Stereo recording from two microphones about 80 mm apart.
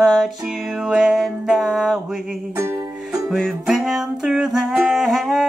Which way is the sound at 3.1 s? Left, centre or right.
Centre.